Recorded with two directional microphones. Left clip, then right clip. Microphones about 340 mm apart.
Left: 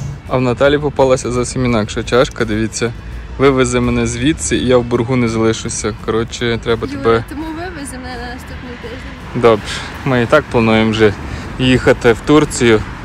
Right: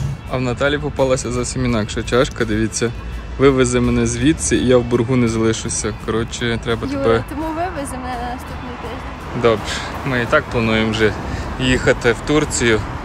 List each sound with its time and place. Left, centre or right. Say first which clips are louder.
0.3 s speech: left 6 dB; centre
9.4 s speech: left 5 dB; centre